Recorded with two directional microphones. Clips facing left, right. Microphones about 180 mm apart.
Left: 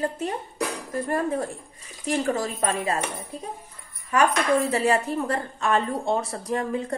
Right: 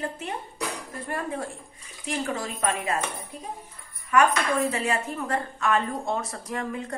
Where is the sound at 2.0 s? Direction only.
40° left (ahead or behind).